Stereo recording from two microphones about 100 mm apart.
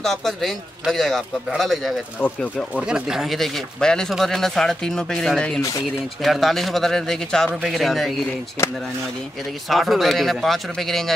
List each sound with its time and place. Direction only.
0.0 s a man's voice: centre (ahead or behind)
2.2 s speech: 15° left (ahead or behind)
2.9 s a man's voice: 5° right (ahead or behind)
9.7 s a man's voice: centre (ahead or behind)